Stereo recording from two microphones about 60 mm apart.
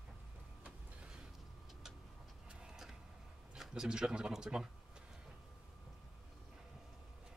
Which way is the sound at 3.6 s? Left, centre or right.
Centre.